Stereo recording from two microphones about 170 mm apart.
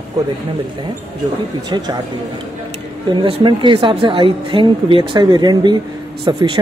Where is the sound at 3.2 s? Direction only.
30° right (ahead or behind).